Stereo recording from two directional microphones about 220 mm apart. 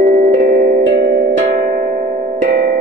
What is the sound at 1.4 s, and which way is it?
Music, 30° right (ahead or behind).